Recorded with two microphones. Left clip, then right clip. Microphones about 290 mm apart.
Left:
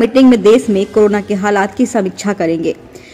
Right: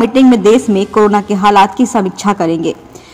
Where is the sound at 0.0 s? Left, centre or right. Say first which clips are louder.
Even; centre.